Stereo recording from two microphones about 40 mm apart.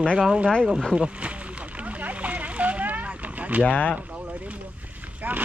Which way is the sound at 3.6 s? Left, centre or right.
Left.